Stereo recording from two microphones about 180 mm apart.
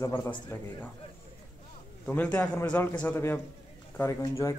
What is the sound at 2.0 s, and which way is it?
A man's voice, 5° left (ahead or behind).